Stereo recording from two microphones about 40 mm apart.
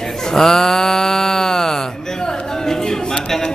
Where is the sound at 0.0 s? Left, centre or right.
Centre.